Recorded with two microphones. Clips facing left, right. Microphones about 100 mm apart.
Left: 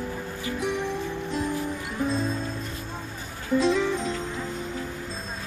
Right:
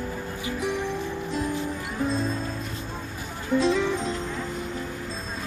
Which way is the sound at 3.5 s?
Centre (ahead or behind).